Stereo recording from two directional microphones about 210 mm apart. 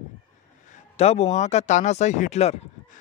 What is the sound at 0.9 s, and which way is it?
A man's voice, 30° left (ahead or behind).